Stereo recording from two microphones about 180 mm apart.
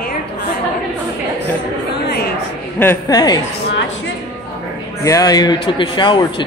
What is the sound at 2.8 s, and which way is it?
Speech, 15° left (ahead or behind).